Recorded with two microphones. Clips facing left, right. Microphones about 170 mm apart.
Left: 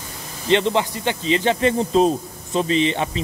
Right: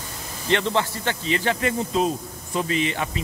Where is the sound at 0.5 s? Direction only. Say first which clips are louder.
Left 4 dB; 20° left (ahead or behind).